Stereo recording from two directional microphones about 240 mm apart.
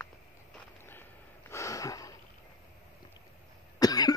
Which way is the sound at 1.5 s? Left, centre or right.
Centre.